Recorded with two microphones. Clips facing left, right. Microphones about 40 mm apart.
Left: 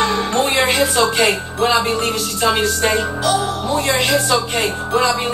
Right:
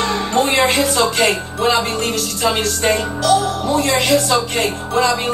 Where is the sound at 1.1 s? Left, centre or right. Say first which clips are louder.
Even; centre.